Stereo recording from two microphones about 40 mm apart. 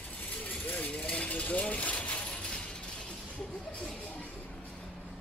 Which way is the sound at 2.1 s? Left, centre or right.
Left.